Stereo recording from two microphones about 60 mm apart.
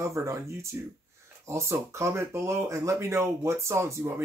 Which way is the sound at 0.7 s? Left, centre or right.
Right.